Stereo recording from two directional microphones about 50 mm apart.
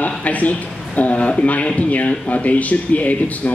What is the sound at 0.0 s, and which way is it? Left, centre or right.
Speech, left.